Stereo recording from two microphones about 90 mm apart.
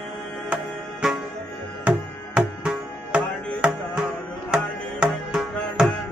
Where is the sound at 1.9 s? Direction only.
10° right (ahead or behind).